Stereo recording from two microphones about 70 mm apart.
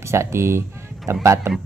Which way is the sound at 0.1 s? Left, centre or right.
Right.